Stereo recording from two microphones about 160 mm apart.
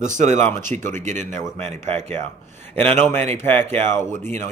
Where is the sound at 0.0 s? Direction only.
50° right (ahead or behind).